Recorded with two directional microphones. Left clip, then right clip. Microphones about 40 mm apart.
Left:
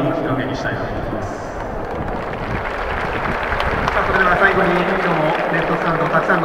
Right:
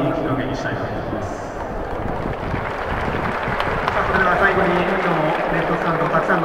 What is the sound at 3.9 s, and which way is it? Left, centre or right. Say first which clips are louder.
Run: left 2 dB; left.